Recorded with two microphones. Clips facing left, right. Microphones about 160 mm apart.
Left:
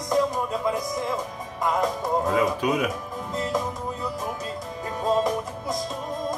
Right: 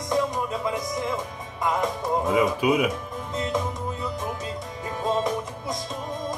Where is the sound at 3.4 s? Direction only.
Centre (ahead or behind).